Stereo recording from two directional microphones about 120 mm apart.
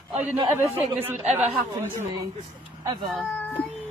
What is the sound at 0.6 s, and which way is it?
Speech, 20° right (ahead or behind).